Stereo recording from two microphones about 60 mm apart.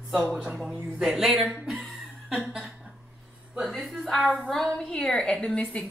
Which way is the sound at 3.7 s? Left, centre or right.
Centre.